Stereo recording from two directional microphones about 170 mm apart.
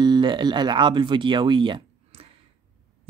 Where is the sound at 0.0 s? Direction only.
25° right (ahead or behind).